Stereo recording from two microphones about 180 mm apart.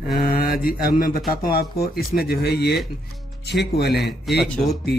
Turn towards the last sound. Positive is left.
turn(degrees=0)  # may be behind; listen again after turning